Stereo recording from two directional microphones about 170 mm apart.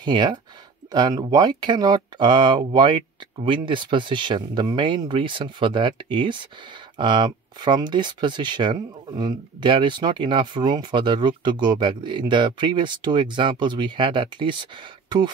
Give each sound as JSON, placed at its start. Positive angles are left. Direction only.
{"t": 0.0, "sound": "speech", "side_deg": -25}